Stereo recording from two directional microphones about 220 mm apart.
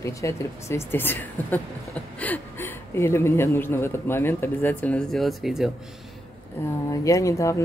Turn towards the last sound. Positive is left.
turn(degrees=15)  # may be behind; listen again after turning